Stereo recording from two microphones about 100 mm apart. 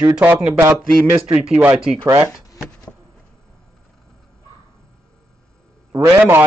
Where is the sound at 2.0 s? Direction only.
25° right (ahead or behind).